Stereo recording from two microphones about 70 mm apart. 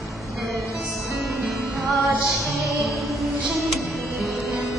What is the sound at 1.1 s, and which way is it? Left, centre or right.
Music, centre.